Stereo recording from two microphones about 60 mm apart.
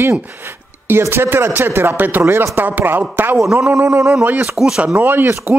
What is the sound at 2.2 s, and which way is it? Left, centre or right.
Speech, right.